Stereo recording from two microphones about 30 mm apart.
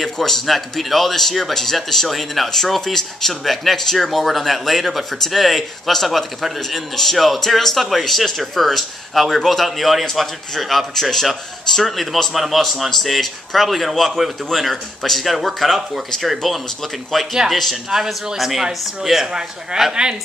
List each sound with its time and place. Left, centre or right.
0.0 s speech: centre
2.8 s speech: centre
4.0 s speech: centre
17.8 s a man's voice: centre
19.2 s a man's voice: right